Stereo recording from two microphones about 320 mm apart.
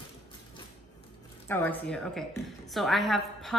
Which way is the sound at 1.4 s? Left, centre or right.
Centre.